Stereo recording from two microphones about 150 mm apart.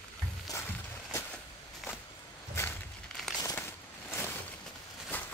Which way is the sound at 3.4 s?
15° left (ahead or behind).